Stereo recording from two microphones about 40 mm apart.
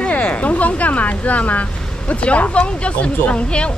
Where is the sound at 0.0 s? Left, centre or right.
Left.